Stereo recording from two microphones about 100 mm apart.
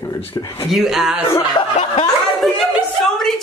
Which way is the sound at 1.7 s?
90° left.